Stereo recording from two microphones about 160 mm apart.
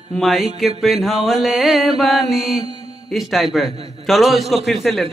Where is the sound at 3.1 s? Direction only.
Centre (ahead or behind).